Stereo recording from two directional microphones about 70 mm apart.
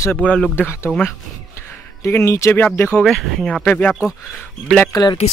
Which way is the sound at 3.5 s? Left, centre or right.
Centre.